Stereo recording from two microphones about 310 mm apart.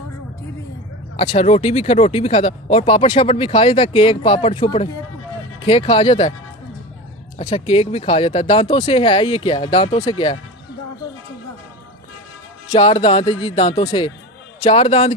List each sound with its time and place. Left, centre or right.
1.1 s speech: left
7.3 s speech: centre
12.7 s speech: centre